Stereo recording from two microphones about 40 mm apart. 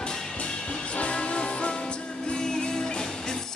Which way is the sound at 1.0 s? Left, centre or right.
Left.